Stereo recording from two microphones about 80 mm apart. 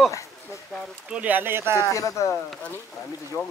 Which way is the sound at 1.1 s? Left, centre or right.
Centre.